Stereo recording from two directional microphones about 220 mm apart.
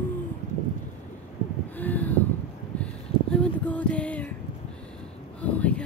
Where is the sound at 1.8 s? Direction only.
5° left (ahead or behind).